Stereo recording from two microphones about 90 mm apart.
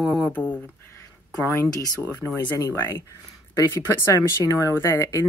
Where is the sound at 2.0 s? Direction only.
30° left (ahead or behind).